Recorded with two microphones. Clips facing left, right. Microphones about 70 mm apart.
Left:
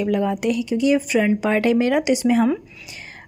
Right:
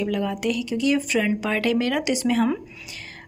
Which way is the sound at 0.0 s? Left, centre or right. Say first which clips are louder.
Left 4 dB; left.